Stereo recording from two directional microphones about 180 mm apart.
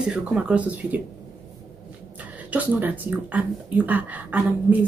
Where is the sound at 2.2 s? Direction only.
10° right (ahead or behind).